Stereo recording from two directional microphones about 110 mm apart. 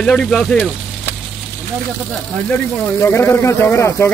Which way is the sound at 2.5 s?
10° left (ahead or behind).